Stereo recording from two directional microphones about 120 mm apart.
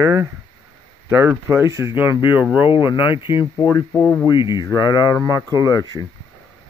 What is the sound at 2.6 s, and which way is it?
Speech, 45° left (ahead or behind).